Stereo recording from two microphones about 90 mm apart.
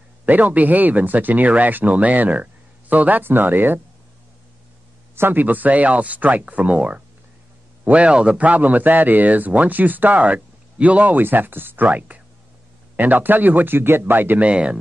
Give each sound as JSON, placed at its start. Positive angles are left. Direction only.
{"t": 0.2, "sound": "speech", "side_deg": -20}
{"t": 5.1, "sound": "a man's voice", "side_deg": -25}